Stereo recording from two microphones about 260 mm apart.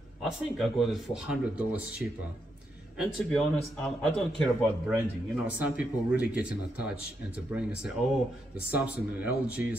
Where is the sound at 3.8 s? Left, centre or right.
Centre.